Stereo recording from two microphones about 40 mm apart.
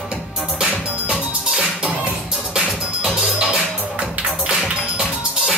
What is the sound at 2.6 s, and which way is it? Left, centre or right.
Music, centre.